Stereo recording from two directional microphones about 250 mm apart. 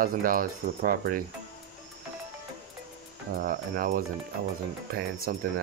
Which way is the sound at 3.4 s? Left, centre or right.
Right.